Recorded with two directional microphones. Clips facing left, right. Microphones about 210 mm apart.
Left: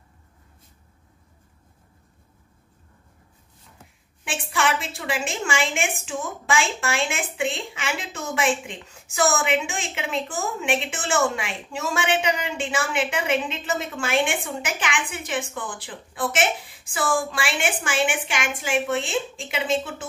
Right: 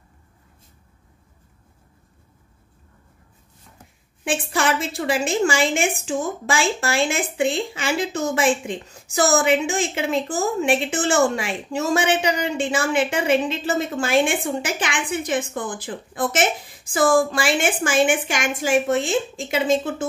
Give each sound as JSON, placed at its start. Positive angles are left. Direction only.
{"t": 3.7, "sound": "a woman's voice", "side_deg": -40}